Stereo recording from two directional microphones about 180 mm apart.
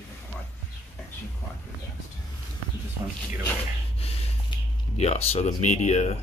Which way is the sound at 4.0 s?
35° left (ahead or behind).